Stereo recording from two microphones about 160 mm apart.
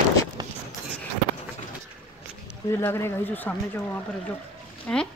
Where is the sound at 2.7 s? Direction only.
15° left (ahead or behind).